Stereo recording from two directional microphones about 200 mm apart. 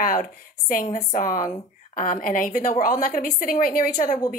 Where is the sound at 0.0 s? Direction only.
40° left (ahead or behind).